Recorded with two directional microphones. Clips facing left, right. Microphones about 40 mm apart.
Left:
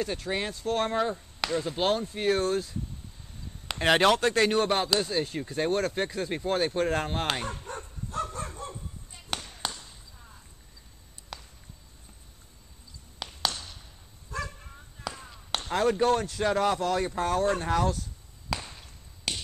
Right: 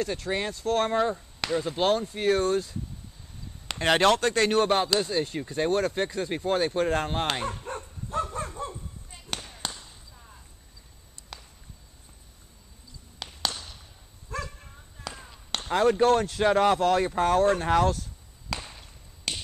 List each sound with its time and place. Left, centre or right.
0.0 s speech: centre
4.5 s speech: centre
7.7 s dog: right
9.6 s basketball bounce: centre
11.3 s a sound: centre
13.2 s a sound: centre
14.4 s basketball bounce: centre
16.4 s speech: centre
18.5 s a sound: centre